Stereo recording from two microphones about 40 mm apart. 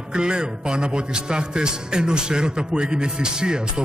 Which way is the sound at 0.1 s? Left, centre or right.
Right.